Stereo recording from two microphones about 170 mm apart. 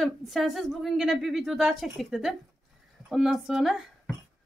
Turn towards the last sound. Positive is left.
turn(degrees=0)  # may be behind; listen again after turning